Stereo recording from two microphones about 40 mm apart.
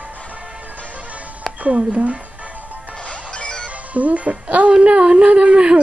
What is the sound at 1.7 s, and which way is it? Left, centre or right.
Speech, right.